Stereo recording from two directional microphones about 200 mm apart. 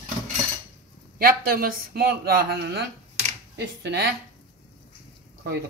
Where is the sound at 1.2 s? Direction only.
45° right (ahead or behind).